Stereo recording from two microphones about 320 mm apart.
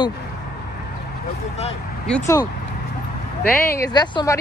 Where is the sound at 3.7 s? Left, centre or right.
Centre.